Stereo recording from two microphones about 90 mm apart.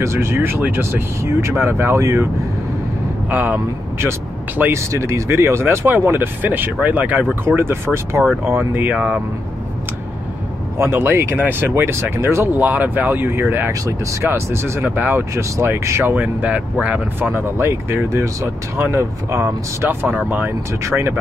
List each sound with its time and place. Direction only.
0.0 s speech: 30° right (ahead or behind)
3.3 s speech: 20° right (ahead or behind)
4.7 s speech: 35° right (ahead or behind); by 9.2 s 15° right (ahead or behind)
10.8 s speech: 25° right (ahead or behind)
16.2 s speech: 15° right (ahead or behind)